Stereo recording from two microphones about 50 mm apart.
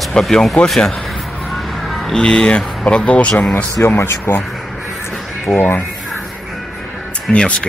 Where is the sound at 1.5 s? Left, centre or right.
Centre.